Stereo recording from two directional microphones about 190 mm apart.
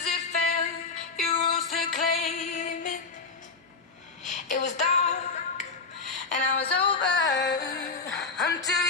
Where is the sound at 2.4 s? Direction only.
40° left (ahead or behind).